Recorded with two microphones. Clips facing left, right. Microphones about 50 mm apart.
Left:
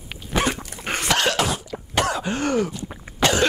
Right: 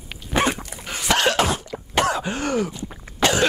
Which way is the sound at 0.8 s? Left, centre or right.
Left.